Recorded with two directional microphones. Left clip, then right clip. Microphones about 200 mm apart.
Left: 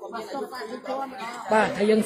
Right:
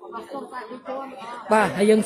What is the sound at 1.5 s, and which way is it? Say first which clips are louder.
Speech: right 3 dB; 25° right (ahead or behind).